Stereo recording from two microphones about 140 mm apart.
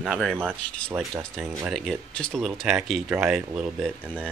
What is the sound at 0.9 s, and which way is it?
Speech, 20° right (ahead or behind).